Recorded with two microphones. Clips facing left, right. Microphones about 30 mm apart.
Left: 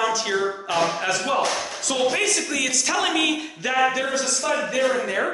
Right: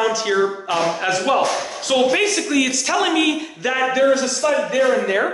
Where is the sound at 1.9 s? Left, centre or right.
Right.